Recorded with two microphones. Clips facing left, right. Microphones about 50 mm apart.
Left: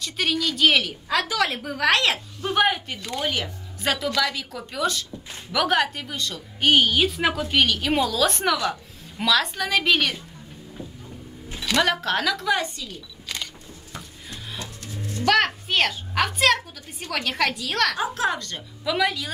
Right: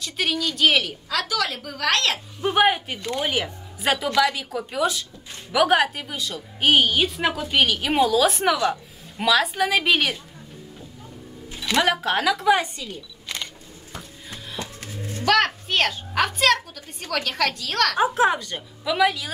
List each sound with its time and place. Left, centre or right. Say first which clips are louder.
0.0 s a woman's voice: even; centre
1.0 s a woman's voice: left 2 dB; left
2.4 s a woman's voice: right 3 dB; centre
11.6 s speech: right 1 dB; centre
14.6 s a sound: right 2 dB; right
15.2 s a woman's voice: even; centre
17.9 s a woman's voice: right 5 dB; right
18.4 s a woman's voice: even; centre